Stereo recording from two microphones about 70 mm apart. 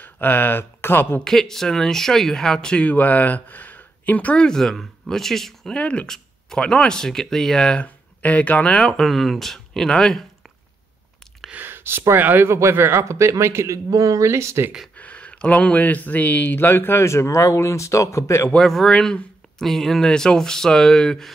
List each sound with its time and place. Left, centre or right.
0.0 s speech: left
1.2 s speech: centre; by 4.5 s left
4.5 s speech: centre; by 8.7 s left
8.7 s speech: centre
11.5 s speech: right
13.8 s speech: right
15.0 s speech: centre; by 18.5 s left
18.5 s speech: centre